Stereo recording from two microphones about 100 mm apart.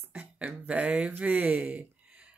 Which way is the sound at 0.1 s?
10° right (ahead or behind).